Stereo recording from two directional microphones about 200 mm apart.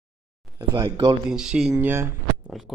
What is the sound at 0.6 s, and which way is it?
Speech, 20° right (ahead or behind).